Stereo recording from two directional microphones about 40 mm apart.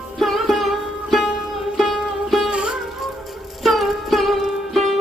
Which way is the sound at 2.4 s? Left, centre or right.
Centre.